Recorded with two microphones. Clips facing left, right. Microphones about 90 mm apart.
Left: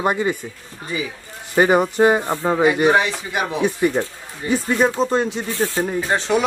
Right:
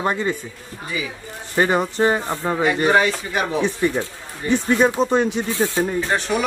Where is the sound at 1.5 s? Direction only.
15° left (ahead or behind).